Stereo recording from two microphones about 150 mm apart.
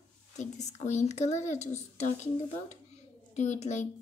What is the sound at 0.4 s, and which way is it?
Speech, 50° left (ahead or behind).